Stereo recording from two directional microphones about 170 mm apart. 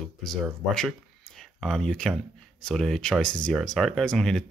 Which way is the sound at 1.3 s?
Centre (ahead or behind).